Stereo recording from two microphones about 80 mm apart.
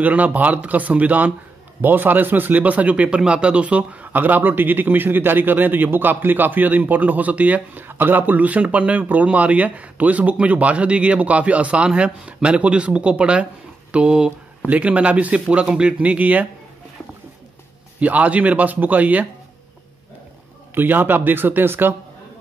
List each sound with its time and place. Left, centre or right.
0.0 s speech: centre
18.0 s speech: centre
20.7 s speech: right